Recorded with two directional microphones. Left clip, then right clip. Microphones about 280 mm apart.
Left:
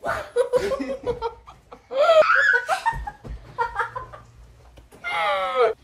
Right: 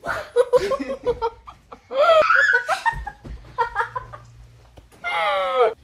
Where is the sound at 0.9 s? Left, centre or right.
Right.